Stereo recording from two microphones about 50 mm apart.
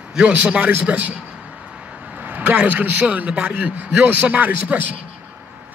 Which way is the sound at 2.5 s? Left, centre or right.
Right.